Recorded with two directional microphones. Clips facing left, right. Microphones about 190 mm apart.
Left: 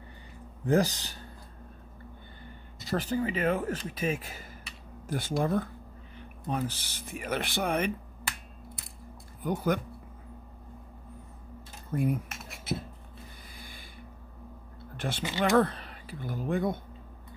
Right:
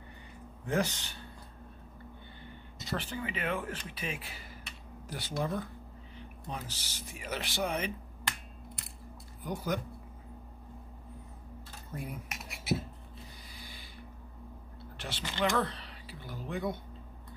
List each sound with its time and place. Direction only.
0.7 s speech: 35° left (ahead or behind)
2.9 s speech: 40° left (ahead or behind); by 7.9 s 55° left (ahead or behind)
9.4 s speech: 60° left (ahead or behind)
11.9 s speech: 55° left (ahead or behind)
12.3 s a sound: 15° right (ahead or behind)
13.6 s a sound: 50° left (ahead or behind)
15.0 s speech: 50° left (ahead or behind)